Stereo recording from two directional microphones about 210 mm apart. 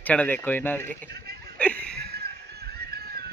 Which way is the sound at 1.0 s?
50° right (ahead or behind).